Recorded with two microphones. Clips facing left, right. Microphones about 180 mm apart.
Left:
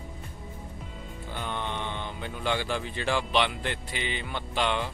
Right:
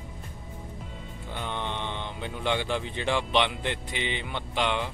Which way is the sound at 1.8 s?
20° right (ahead or behind).